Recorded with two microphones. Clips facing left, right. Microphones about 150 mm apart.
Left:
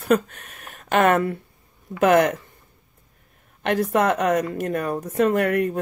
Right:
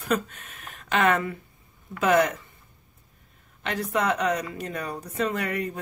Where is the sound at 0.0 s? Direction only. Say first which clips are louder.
Left 7 dB; 40° left (ahead or behind).